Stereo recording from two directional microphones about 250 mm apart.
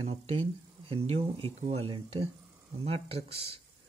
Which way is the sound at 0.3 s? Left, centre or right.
Right.